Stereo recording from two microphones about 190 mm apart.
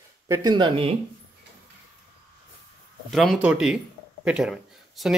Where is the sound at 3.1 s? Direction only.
Centre (ahead or behind).